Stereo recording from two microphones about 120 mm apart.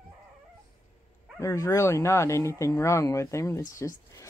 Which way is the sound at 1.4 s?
25° left (ahead or behind).